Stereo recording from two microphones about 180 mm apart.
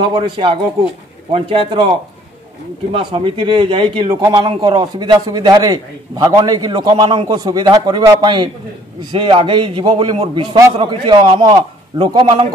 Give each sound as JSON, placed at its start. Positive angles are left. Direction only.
{"t": 0.0, "sound": "speech", "side_deg": -25}